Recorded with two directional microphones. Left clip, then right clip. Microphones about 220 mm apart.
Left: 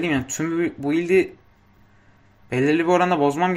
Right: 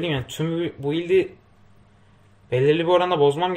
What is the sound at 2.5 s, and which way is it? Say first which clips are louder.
Speech: even; 30° left (ahead or behind).